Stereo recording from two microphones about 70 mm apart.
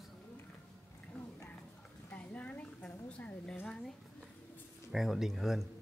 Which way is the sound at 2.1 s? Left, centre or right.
Centre.